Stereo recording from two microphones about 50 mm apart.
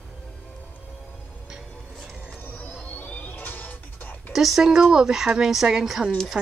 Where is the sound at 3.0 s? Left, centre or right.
Left.